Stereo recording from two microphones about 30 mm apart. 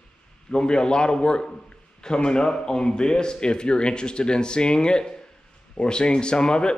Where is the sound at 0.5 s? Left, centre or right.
Left.